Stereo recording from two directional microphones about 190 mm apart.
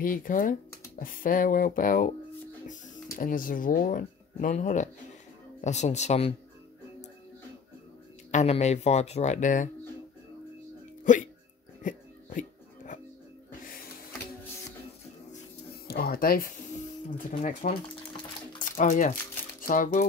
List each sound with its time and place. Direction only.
0.0 s speech: 45° left (ahead or behind)
8.3 s speech: 35° left (ahead or behind)
11.8 s music: 45° left (ahead or behind)
15.9 s speech: 50° left (ahead or behind)